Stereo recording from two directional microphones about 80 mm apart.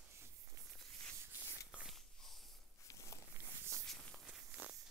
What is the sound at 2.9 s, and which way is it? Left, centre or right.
Walk, left.